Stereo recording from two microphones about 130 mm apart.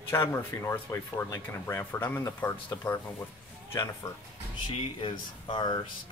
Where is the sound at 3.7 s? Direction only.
25° left (ahead or behind).